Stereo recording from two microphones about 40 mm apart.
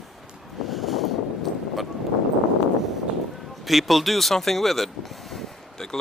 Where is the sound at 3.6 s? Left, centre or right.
Centre.